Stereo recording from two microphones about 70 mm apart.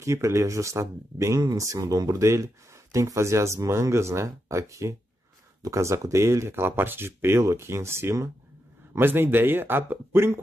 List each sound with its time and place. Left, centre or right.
0.0 s speech: right